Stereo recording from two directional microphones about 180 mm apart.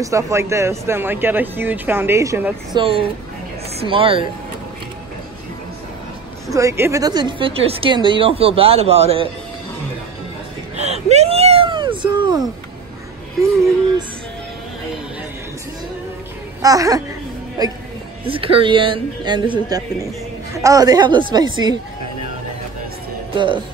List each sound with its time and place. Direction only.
0.0 s speech: 15° right (ahead or behind)
2.7 s speech: 30° right (ahead or behind)
6.5 s speech: 15° right (ahead or behind); by 9.3 s 35° right (ahead or behind)
10.8 s a sound: 35° right (ahead or behind)
13.4 s speech: 15° right (ahead or behind)
16.6 s speech: 20° right (ahead or behind)
18.2 s speech: 30° right (ahead or behind)
23.3 s speech: 25° right (ahead or behind)